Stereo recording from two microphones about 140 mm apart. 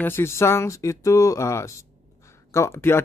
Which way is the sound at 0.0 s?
15° left (ahead or behind).